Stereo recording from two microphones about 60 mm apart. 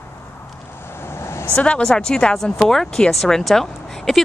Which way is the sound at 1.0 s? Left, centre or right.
Left.